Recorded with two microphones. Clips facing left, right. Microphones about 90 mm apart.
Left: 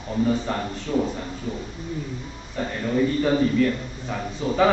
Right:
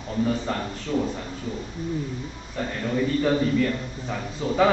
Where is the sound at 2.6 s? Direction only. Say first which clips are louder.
Left 3 dB; 5° left (ahead or behind).